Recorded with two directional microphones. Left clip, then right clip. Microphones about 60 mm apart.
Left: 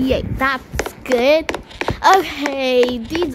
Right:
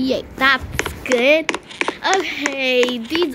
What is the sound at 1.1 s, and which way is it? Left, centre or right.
Speech, left.